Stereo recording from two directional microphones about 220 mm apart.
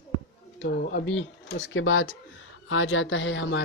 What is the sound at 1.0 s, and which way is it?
Speech, 55° left (ahead or behind).